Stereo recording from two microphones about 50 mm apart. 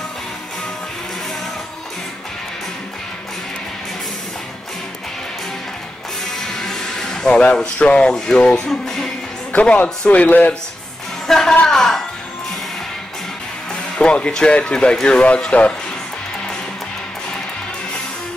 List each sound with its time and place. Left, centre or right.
6.5 s music: centre
8.1 s speech: centre
9.5 s speech: left
11.2 s a sound: centre
13.9 s speech: centre